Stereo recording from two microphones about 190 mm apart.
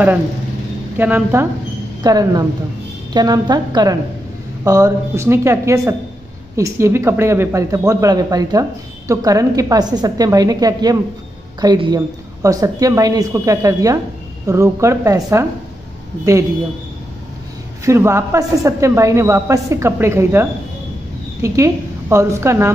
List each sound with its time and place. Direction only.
0.9 s a man's voice: 10° right (ahead or behind)
17.8 s a woman's voice: 15° right (ahead or behind)